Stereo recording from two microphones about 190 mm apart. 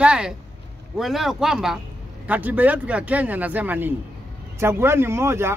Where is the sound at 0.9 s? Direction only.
Centre (ahead or behind).